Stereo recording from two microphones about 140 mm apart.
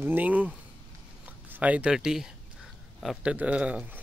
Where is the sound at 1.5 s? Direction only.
10° right (ahead or behind).